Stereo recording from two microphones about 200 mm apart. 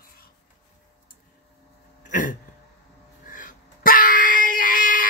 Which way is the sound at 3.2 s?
40° left (ahead or behind).